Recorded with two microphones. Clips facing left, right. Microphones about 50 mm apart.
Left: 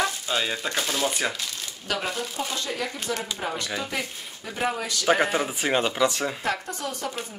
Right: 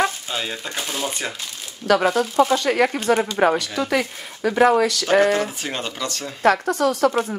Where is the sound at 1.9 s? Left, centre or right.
Right.